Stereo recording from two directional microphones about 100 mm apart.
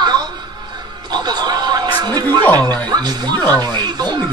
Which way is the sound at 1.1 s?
45° right (ahead or behind).